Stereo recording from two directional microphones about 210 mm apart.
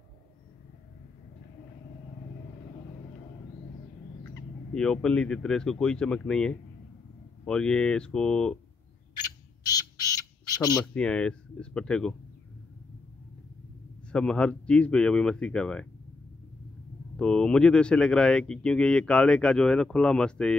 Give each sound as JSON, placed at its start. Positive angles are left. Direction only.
{"t": 4.7, "sound": "speech", "side_deg": 5}
{"t": 9.7, "sound": "bird", "side_deg": 15}
{"t": 11.0, "sound": "speech", "side_deg": 5}
{"t": 14.1, "sound": "speech", "side_deg": 5}
{"t": 17.2, "sound": "speech", "side_deg": 5}